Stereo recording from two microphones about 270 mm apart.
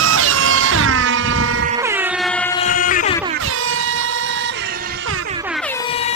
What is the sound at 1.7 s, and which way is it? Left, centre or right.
Air horn, centre.